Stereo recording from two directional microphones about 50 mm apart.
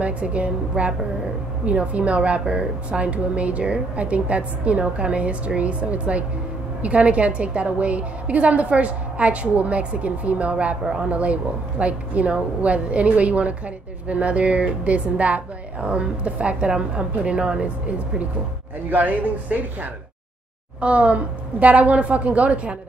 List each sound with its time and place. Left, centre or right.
0.0 s a woman's voice: right
18.9 s a woman's voice: right